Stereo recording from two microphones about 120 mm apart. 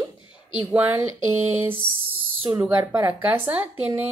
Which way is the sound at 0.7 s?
15° right (ahead or behind).